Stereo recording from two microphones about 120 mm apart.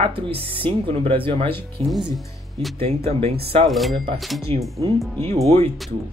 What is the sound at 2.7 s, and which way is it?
Speech, 55° right (ahead or behind).